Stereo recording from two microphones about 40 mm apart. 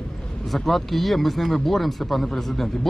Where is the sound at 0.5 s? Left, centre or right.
Centre.